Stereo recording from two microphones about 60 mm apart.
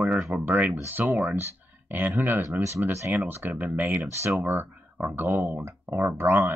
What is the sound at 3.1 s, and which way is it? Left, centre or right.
Speech, right.